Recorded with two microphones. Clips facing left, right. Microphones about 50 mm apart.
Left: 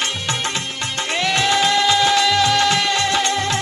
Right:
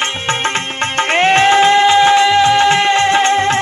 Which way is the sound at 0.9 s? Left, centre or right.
Right.